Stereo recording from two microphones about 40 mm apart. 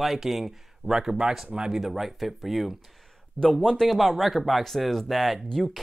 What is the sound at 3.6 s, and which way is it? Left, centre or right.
Speech, centre.